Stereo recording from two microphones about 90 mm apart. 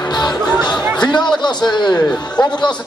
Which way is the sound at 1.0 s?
55° left (ahead or behind).